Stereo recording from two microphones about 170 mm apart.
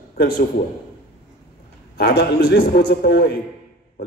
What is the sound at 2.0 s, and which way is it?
A man's voice, 70° left (ahead or behind).